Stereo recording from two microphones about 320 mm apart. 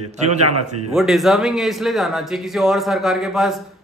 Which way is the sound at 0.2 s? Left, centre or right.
Right.